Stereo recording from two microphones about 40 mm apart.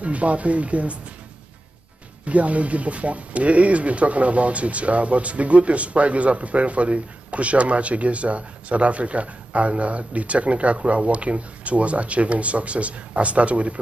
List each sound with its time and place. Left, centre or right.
0.0 s speech: right
2.2 s speech: right